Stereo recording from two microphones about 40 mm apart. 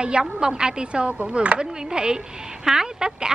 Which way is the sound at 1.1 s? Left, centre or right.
Right.